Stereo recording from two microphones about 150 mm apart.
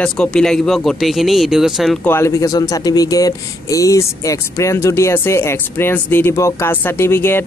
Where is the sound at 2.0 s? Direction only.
15° left (ahead or behind).